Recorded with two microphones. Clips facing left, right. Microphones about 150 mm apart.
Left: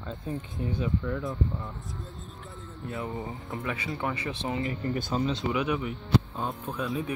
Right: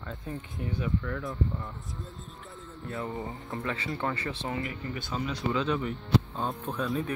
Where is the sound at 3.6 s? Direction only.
15° left (ahead or behind).